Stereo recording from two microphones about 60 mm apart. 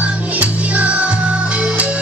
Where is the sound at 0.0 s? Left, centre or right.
Right.